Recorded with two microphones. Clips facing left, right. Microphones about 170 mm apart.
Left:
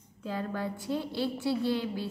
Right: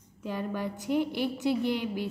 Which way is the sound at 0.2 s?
15° right (ahead or behind).